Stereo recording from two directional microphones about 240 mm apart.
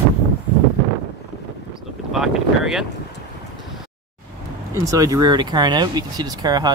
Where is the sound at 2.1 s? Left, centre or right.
Centre.